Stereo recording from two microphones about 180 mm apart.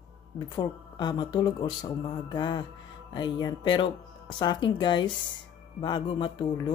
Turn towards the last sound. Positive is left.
turn(degrees=25)  # may be behind; listen again after turning